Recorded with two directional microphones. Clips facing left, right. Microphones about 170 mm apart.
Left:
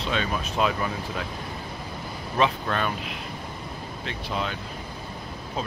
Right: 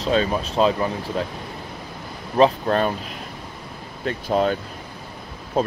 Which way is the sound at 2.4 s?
35° right (ahead or behind).